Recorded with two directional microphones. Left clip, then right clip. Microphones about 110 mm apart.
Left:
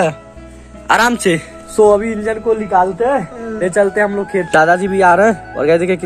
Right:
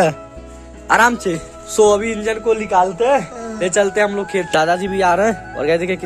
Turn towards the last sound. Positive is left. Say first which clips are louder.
# left 4 dB
turn(degrees=0)  # may be behind; listen again after turning